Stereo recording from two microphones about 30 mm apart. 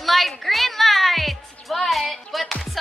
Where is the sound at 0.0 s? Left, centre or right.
Centre.